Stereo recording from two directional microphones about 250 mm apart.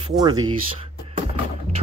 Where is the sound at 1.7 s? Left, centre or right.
Right.